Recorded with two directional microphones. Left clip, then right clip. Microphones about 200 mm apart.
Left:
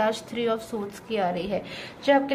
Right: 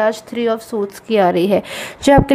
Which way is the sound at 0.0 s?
45° right (ahead or behind).